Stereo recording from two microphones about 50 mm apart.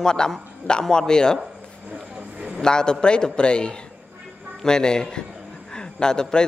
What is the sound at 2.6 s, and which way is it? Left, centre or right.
A man's voice, centre.